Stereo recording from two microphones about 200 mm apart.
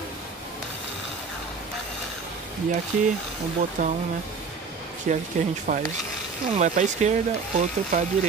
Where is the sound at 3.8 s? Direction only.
40° right (ahead or behind).